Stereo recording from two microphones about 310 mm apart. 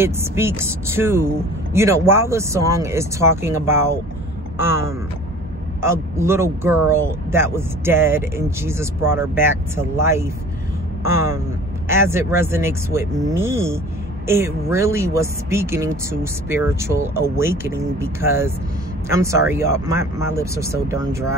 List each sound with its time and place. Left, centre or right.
0.0 s speech: centre
5.8 s speech: centre